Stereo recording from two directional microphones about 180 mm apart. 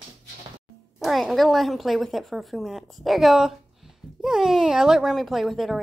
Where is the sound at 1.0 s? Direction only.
Centre (ahead or behind).